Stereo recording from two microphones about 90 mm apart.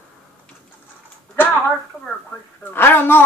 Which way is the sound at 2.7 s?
25° left (ahead or behind).